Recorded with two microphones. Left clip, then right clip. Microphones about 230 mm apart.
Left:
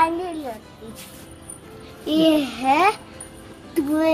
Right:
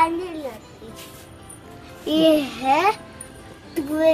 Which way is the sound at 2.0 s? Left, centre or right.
Centre.